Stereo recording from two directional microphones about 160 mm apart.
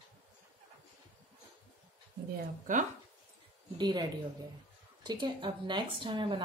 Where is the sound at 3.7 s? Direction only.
25° right (ahead or behind).